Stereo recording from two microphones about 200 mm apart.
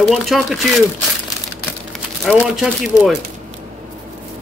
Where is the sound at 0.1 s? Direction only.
Centre (ahead or behind).